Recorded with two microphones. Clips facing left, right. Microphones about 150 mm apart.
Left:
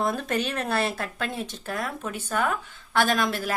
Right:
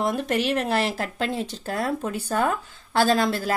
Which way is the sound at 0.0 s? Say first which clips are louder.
Right 3 dB; 15° right (ahead or behind).